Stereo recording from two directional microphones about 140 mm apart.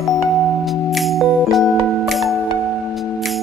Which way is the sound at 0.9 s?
Centre (ahead or behind).